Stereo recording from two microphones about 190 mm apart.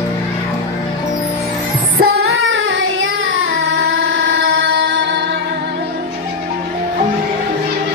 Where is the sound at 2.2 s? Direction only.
90° right.